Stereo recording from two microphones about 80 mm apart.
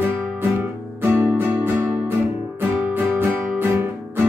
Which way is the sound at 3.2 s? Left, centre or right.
Right.